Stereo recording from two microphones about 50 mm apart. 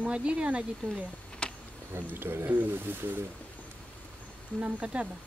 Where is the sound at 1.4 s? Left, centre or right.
Left.